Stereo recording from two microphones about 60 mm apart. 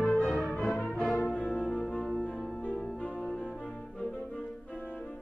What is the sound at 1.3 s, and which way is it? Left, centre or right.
Music, left.